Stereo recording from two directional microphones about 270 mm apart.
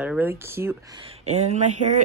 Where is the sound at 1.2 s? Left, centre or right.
Right.